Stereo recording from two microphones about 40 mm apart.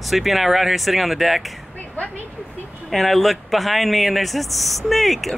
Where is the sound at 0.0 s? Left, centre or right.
Centre.